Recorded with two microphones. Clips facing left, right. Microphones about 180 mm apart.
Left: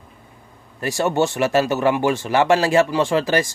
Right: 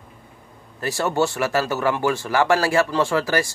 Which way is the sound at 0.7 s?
20° left (ahead or behind).